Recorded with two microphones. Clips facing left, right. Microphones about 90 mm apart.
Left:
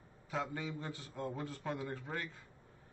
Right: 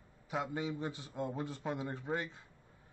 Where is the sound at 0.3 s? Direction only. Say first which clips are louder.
Right 2 dB; 15° right (ahead or behind).